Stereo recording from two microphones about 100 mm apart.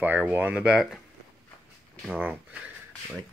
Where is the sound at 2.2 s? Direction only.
15° right (ahead or behind).